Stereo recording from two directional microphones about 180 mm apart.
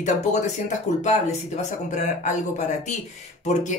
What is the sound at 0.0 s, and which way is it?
Speech, 40° left (ahead or behind).